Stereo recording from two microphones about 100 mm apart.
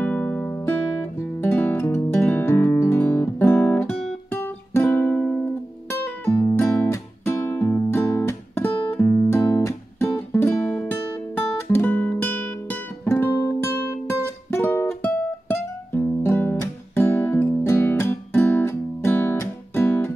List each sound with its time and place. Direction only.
0.0 s music: 15° left (ahead or behind)